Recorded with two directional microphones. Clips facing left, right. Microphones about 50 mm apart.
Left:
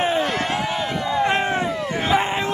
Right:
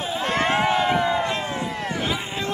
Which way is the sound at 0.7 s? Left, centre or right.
Centre.